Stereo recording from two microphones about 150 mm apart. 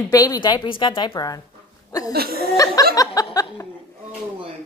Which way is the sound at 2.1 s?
90° right.